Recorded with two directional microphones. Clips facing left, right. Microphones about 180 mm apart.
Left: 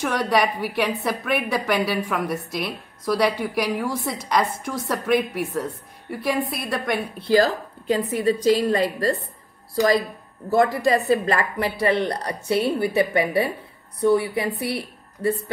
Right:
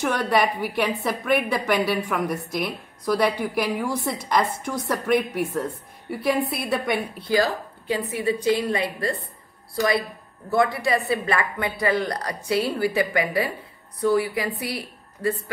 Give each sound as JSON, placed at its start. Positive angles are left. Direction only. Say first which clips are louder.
{"t": 0.0, "sound": "a woman's voice", "louder": "even", "side_deg": 0}
{"t": 7.9, "sound": "a woman's voice", "louder": "left 4 dB", "side_deg": 40}
{"t": 10.5, "sound": "a woman's voice", "louder": "left 3 dB", "side_deg": 40}